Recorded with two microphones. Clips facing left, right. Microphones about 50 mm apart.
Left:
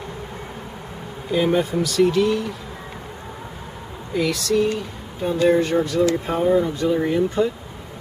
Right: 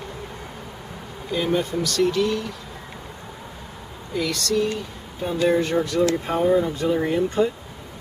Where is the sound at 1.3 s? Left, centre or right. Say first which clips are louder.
Left 4 dB; centre.